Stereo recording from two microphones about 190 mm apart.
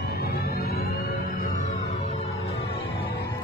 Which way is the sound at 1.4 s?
40° left (ahead or behind).